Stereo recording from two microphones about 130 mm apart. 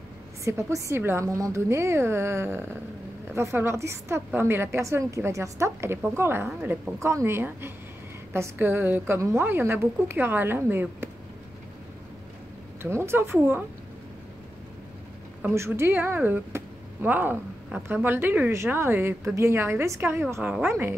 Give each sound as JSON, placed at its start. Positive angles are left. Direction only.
{"t": 0.5, "sound": "a woman's voice", "side_deg": -20}
{"t": 12.9, "sound": "a woman's voice", "side_deg": -20}
{"t": 15.4, "sound": "a woman's voice", "side_deg": -20}